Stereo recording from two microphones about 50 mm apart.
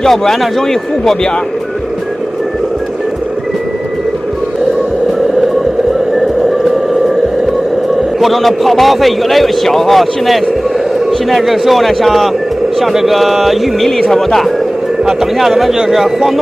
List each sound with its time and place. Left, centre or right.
0.0 s speech: centre
6.1 s a sound: centre
8.2 s a man's voice: centre
15.0 s a man's voice: centre